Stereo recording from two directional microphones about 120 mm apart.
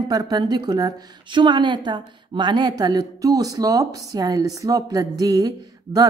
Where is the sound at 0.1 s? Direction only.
35° right (ahead or behind).